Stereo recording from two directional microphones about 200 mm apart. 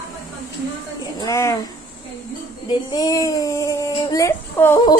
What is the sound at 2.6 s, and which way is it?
Speech, 20° left (ahead or behind).